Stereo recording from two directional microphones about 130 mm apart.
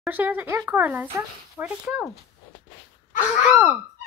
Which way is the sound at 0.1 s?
15° right (ahead or behind).